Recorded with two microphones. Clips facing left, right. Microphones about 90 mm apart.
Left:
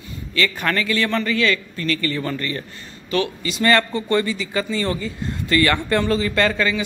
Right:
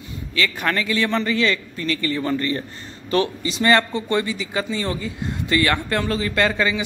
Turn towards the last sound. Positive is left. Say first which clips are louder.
# left 1 dB
turn(degrees=-15)  # may be behind; listen again after turning